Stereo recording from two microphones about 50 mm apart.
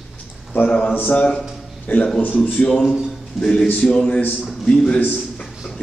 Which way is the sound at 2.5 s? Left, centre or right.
Centre.